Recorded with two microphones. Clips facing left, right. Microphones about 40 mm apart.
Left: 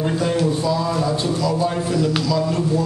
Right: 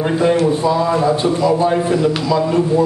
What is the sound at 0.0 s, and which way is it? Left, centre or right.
A man's voice, right.